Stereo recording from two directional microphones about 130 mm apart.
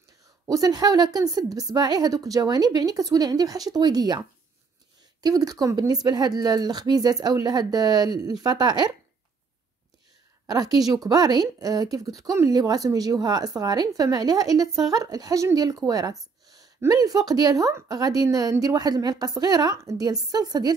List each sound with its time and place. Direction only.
0.5 s speech: 30° right (ahead or behind)
5.2 s speech: 30° right (ahead or behind)
10.4 s speech: 30° right (ahead or behind)